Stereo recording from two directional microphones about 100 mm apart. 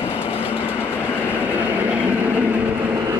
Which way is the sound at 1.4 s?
15° right (ahead or behind).